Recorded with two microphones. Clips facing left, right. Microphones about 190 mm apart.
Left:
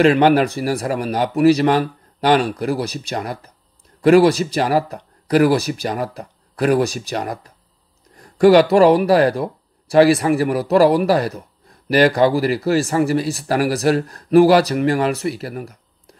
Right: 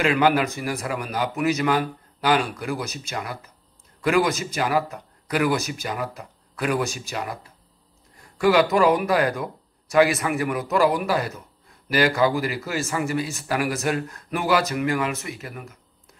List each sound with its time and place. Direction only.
0.0 s speech: 35° left (ahead or behind)
8.4 s speech: 35° left (ahead or behind)